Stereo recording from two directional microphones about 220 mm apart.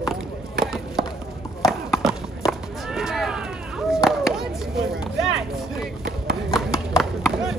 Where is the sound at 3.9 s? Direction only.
Centre (ahead or behind).